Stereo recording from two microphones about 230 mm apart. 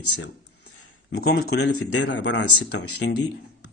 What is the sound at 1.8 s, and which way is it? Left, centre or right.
Speech, left.